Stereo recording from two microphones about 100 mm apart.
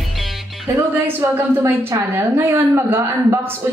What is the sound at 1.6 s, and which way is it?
Speech, 25° right (ahead or behind).